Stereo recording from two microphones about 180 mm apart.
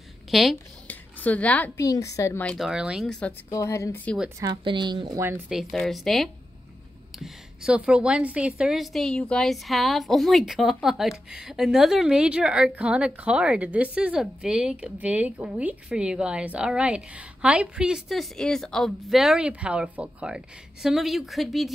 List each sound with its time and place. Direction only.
0.3 s speech: centre (ahead or behind)
0.8 s a sound: 10° left (ahead or behind)
1.8 s speech: 20° left (ahead or behind)
3.4 s speech: 15° left (ahead or behind)
4.4 s a woman's voice: 25° right (ahead or behind)
5.2 s speech: 10° right (ahead or behind)
5.6 s a woman's voice: centre (ahead or behind)